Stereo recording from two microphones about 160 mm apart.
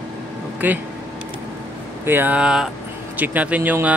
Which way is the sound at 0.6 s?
10° right (ahead or behind).